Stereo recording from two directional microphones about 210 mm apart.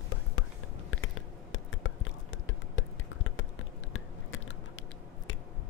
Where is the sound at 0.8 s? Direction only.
70° left (ahead or behind).